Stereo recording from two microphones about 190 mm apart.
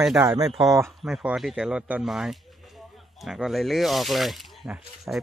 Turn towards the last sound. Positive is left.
turn(degrees=-10)  # may be behind; listen again after turning